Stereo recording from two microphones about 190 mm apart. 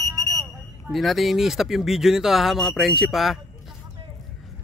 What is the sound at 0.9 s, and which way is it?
Speech, centre (ahead or behind).